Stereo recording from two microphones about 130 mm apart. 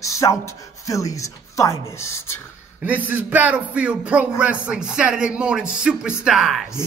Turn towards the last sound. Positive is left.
turn(degrees=0)  # may be behind; listen again after turning